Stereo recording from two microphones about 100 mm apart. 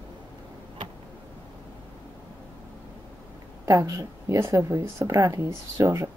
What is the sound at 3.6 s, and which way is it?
A woman's voice, 30° right (ahead or behind).